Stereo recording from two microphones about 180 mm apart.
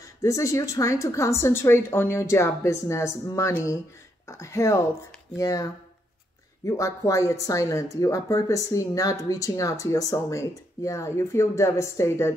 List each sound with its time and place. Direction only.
0.0 s speech: 20° left (ahead or behind)